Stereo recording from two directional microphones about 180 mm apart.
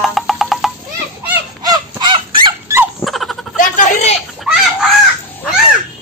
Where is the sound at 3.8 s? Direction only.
40° left (ahead or behind).